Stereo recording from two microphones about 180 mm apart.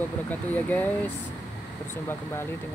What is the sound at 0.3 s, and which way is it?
Mantra, 10° left (ahead or behind).